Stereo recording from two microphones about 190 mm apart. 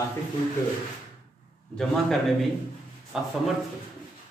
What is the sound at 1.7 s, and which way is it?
A man's voice, centre (ahead or behind).